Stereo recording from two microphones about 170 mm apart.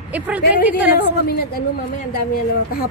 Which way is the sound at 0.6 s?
10° right (ahead or behind).